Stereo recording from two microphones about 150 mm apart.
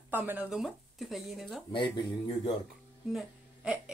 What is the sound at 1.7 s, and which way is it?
Speech, 30° left (ahead or behind).